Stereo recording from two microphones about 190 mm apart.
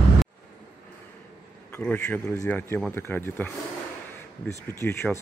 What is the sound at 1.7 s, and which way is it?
A man's voice, 10° left (ahead or behind).